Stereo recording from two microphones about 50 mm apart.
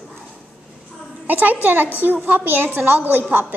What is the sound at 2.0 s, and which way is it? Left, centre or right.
A woman's voice, right.